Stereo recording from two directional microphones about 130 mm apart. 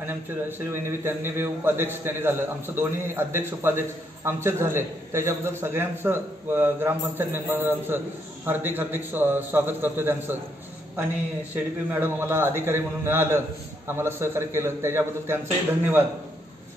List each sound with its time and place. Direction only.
0.0 s a man's voice: 15° right (ahead or behind)
11.5 s a man's voice: 15° right (ahead or behind)